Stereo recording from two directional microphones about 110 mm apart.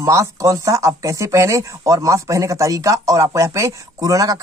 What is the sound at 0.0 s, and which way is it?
Speech, 30° right (ahead or behind).